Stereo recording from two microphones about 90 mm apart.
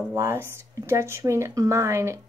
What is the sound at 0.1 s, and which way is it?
Speech, 30° right (ahead or behind).